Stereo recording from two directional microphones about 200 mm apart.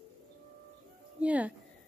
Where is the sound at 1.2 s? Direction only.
5° right (ahead or behind).